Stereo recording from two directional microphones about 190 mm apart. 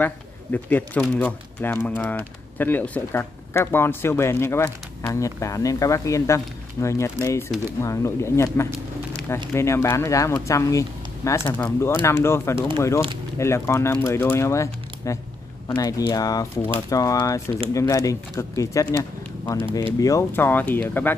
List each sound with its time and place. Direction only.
0.0 s speech: 10° left (ahead or behind)
20.0 s speech: 15° left (ahead or behind)